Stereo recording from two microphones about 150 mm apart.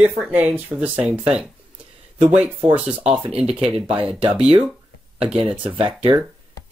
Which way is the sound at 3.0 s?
40° right (ahead or behind).